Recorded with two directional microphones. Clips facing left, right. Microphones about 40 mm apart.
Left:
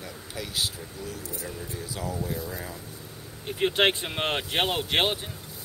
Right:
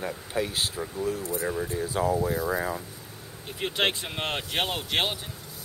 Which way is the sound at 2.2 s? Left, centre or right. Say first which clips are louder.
Right 7 dB; right.